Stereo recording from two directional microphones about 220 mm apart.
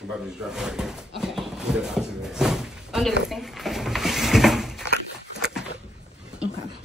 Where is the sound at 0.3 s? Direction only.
5° right (ahead or behind).